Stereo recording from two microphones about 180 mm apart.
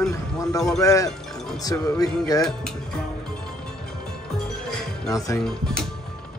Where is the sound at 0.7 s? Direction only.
20° left (ahead or behind).